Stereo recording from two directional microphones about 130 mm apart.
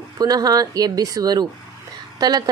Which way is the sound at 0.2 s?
30° right (ahead or behind).